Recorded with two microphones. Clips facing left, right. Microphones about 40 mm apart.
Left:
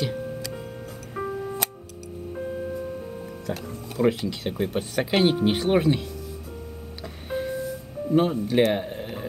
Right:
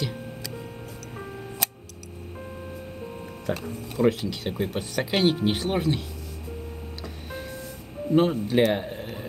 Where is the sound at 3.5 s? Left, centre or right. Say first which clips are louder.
Right 3 dB; right.